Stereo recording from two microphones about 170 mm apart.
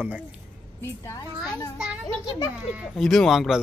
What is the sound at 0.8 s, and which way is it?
Speech, 15° left (ahead or behind).